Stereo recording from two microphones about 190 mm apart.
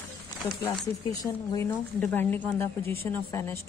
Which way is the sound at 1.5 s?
15° left (ahead or behind).